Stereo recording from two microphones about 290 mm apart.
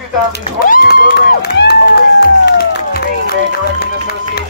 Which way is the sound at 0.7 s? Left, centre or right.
Left.